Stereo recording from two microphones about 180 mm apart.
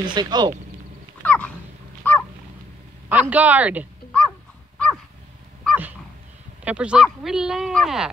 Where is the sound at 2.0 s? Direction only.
10° left (ahead or behind).